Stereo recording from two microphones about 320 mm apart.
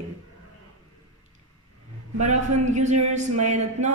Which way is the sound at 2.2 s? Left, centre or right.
Right.